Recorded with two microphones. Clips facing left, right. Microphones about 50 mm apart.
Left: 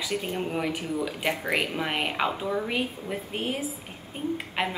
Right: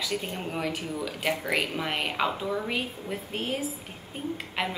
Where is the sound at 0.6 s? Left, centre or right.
Centre.